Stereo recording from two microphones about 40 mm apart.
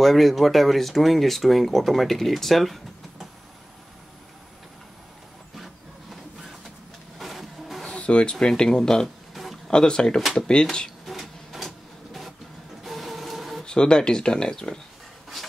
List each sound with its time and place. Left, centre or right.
0.0 s speech: centre
7.2 s vehicle: centre
7.9 s speech: left
9.0 s a sound: centre
9.7 s speech: centre
11.1 s printer: centre
13.7 s speech: left
15.3 s a sound: centre